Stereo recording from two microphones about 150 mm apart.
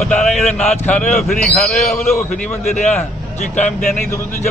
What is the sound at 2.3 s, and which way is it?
Speech, 50° left (ahead or behind).